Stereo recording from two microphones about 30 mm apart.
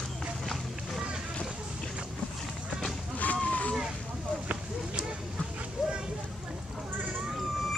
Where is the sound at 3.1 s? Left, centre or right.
Left.